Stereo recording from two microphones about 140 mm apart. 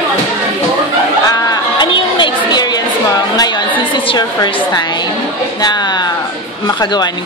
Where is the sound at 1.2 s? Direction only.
25° left (ahead or behind).